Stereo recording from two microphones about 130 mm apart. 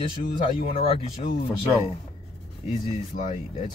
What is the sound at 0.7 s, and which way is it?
Speech, 50° left (ahead or behind).